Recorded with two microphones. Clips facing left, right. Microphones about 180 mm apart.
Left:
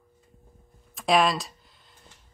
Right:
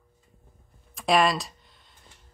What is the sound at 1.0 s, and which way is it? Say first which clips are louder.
Speech: even; centre (ahead or behind).